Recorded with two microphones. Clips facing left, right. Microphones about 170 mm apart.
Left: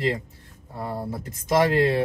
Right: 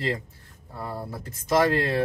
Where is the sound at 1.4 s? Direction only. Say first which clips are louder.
Left 2 dB; 15° left (ahead or behind).